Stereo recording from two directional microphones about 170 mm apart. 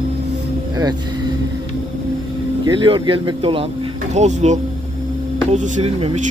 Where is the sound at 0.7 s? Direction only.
20° right (ahead or behind).